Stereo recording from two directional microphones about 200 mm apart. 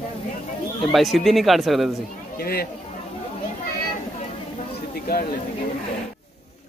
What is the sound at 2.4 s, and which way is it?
Speech, 50° left (ahead or behind).